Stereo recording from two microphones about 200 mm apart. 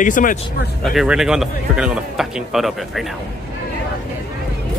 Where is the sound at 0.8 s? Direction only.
Centre (ahead or behind).